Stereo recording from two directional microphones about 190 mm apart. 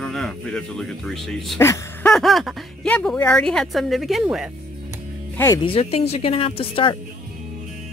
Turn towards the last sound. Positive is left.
turn(degrees=30)  # may be behind; listen again after turning